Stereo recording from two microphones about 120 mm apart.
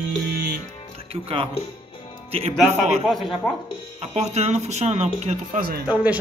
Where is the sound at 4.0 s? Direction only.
60° right (ahead or behind).